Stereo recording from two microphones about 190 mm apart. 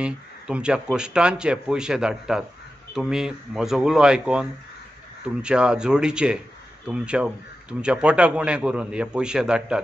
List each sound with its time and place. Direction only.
0.0 s speech: 5° right (ahead or behind)